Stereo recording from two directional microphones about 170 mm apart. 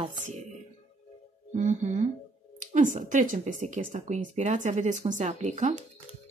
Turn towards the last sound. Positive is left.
turn(degrees=-45)  # may be behind; listen again after turning